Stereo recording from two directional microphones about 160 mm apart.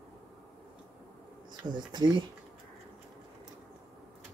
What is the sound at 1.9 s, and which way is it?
Speech, 25° right (ahead or behind).